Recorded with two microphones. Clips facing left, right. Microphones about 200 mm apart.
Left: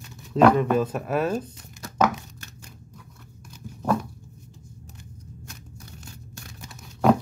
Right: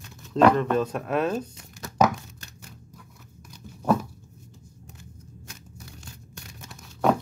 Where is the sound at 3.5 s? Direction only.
5° left (ahead or behind).